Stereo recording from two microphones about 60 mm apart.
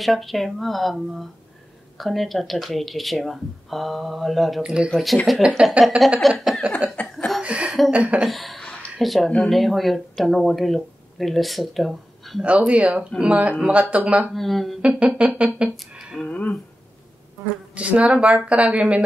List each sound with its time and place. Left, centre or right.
0.0 s speech: centre
4.6 s speech: centre
4.9 s speech: centre
6.2 s a sound: centre
7.0 s a sound: left
7.4 s a sound: right
7.9 s speech: right
8.2 s speech: centre
12.4 s speech: right
14.3 s speech: centre
14.8 s speech: centre
16.3 s a sound: left
17.7 s speech: right